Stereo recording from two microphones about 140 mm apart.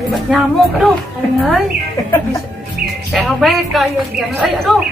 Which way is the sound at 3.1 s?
Centre (ahead or behind).